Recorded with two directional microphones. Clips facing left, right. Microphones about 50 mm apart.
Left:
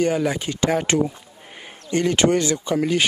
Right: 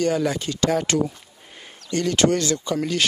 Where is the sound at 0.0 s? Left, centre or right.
Centre.